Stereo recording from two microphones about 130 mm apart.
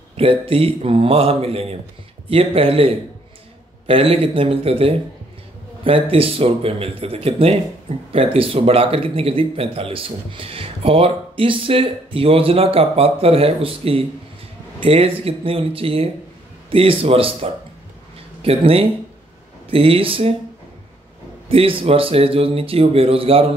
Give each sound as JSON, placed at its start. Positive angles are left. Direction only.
{"t": 0.2, "sound": "a man's voice", "side_deg": -45}
{"t": 21.5, "sound": "a man's voice", "side_deg": -45}